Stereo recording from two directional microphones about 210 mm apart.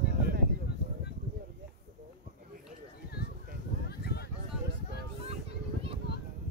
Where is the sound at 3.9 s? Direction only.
50° left (ahead or behind).